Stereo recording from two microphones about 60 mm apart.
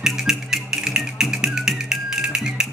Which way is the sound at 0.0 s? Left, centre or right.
Centre.